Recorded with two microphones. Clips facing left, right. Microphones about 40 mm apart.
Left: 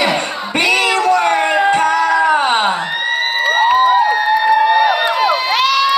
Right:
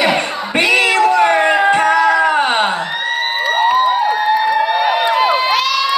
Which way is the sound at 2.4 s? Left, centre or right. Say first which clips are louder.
Left 1 dB; centre.